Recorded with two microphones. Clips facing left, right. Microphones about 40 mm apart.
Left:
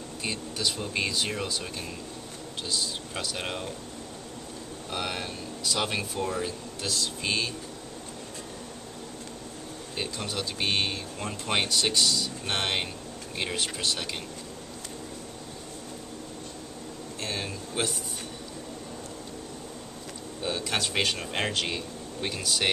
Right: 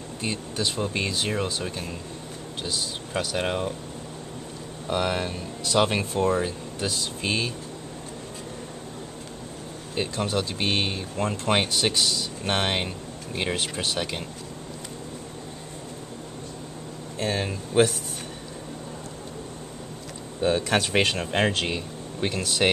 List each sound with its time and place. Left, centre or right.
0.2 s speech: centre
0.9 s speech: centre
4.8 s speech: centre
9.9 s speech: right
11.1 s speech: right
17.2 s speech: centre
20.4 s speech: centre